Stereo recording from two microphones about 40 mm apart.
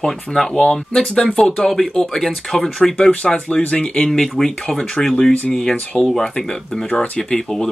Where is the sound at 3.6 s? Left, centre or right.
Left.